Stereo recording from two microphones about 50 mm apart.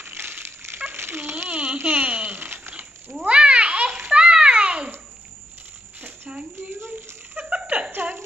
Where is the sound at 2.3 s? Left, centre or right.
Right.